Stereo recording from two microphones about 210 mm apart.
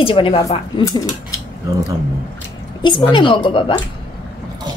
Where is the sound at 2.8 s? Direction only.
20° left (ahead or behind).